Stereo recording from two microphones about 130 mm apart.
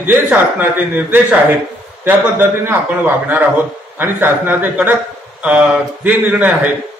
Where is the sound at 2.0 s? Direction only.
15° right (ahead or behind).